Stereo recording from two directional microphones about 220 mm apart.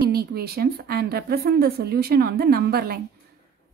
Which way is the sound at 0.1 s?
45° right (ahead or behind).